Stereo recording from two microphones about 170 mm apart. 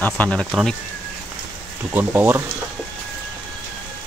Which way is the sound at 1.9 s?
10° right (ahead or behind).